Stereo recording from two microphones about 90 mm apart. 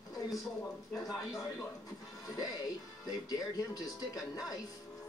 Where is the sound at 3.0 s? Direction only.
45° left (ahead or behind).